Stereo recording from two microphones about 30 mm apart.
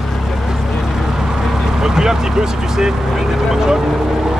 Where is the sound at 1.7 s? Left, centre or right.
Centre.